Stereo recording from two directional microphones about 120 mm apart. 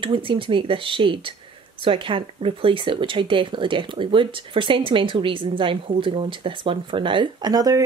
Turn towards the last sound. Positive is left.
turn(degrees=-30)  # may be behind; listen again after turning